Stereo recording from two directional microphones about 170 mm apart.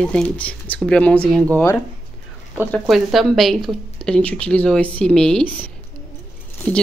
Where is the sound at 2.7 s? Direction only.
Centre (ahead or behind).